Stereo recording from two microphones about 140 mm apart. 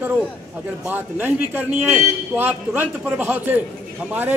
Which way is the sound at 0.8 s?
15° right (ahead or behind).